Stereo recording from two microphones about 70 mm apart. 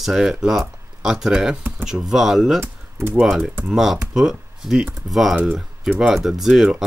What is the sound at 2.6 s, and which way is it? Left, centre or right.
Speech, right.